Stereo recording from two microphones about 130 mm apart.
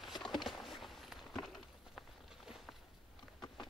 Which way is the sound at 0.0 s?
Centre (ahead or behind).